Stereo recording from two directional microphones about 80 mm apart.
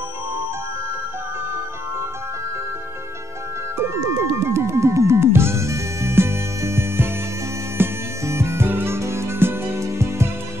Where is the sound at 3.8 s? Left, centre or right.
Right.